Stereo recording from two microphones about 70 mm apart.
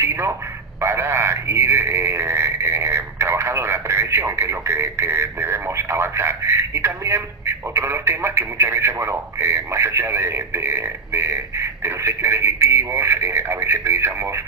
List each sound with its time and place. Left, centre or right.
0.0 s telephone: right
0.7 s speech: right